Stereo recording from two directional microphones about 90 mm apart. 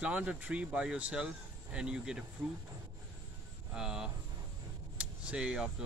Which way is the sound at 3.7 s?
5° right (ahead or behind).